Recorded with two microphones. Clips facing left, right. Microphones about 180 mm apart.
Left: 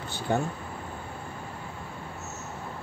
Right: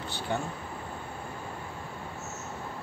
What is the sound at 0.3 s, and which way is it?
Speech, 45° left (ahead or behind).